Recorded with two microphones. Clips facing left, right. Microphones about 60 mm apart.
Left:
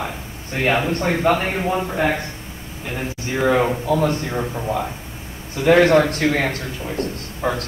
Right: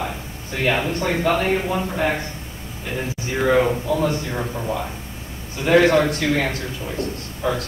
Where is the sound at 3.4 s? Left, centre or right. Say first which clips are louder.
Even; left.